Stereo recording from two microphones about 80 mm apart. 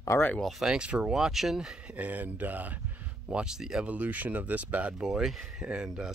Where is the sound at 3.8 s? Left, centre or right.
Centre.